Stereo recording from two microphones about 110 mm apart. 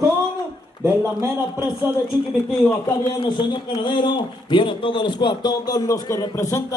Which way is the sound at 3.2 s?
45° left (ahead or behind).